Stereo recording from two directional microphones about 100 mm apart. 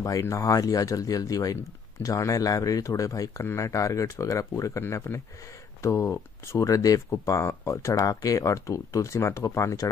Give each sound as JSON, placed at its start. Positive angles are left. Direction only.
{"t": 0.0, "sound": "speech", "side_deg": 35}